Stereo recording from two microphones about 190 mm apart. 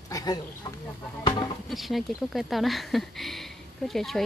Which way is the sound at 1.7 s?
Centre (ahead or behind).